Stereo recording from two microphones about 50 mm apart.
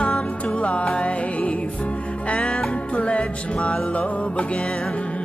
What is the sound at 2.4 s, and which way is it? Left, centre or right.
Music, centre.